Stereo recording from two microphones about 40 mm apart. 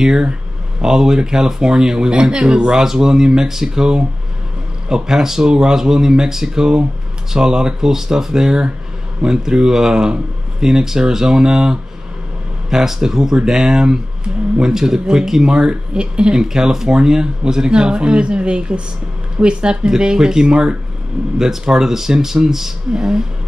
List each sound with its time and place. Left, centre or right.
0.0 s speech: centre
2.7 s speech: centre